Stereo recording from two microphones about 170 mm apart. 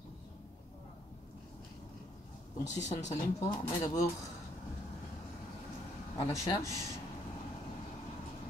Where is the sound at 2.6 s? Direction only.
45° left (ahead or behind).